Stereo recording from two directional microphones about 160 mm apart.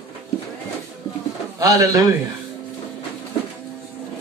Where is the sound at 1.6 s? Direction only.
20° right (ahead or behind).